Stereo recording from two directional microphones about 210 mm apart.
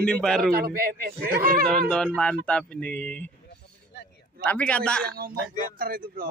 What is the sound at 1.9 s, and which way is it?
Speech, 5° left (ahead or behind).